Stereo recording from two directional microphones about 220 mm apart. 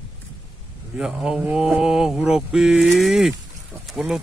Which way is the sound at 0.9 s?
5° right (ahead or behind).